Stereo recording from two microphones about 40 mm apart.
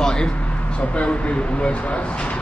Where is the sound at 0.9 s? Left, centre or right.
Left.